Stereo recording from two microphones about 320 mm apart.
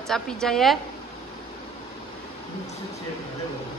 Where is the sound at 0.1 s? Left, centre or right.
Centre.